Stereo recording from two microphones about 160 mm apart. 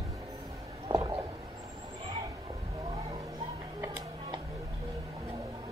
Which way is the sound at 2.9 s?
40° right (ahead or behind).